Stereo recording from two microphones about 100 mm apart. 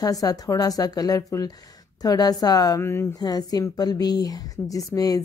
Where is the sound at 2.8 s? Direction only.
25° left (ahead or behind).